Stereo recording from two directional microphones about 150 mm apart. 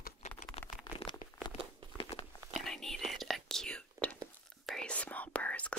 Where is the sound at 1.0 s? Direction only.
40° left (ahead or behind).